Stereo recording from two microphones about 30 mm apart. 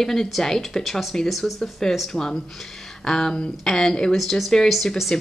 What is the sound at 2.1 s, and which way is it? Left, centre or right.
Speech, centre.